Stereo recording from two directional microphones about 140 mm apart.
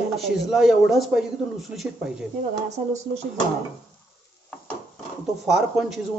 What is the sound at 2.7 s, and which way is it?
Speech, 55° right (ahead or behind).